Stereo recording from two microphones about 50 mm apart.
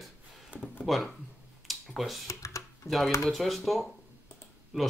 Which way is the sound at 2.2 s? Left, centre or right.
Left.